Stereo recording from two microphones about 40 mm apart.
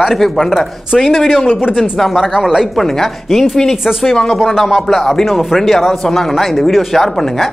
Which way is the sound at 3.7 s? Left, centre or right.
Centre.